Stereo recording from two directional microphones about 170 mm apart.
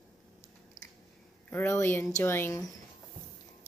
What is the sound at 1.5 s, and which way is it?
Speech, 15° left (ahead or behind).